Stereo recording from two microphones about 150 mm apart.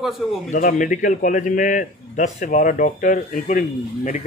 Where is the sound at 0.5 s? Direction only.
60° left (ahead or behind).